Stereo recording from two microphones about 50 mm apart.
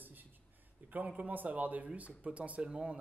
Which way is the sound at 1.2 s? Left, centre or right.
Right.